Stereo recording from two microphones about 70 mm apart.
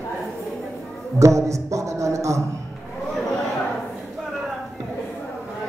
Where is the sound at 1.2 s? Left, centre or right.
Right.